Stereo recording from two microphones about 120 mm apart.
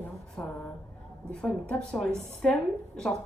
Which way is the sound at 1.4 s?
10° left (ahead or behind).